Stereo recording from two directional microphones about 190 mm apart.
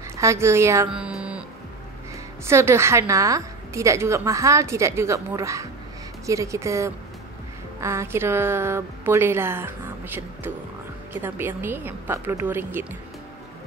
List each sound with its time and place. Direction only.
0.2 s a woman's voice: 15° right (ahead or behind)
0.8 s music: 5° right (ahead or behind)
2.4 s a woman's voice: 15° right (ahead or behind)